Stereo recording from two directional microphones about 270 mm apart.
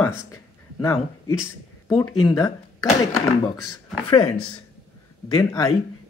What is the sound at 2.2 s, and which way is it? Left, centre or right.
Speech, centre.